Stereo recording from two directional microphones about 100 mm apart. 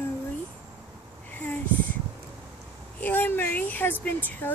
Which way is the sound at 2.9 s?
20° left (ahead or behind).